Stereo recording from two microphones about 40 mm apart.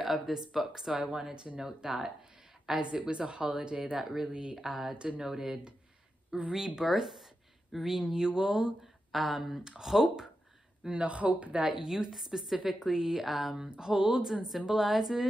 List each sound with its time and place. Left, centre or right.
0.0 s speech: centre
1.3 s speech: right
4.6 s speech: centre
4.9 s speech: right
5.2 s speech: centre
9.1 s speech: centre
9.6 s speech: right
11.1 s speech: right
11.7 s speech: centre
13.7 s speech: centre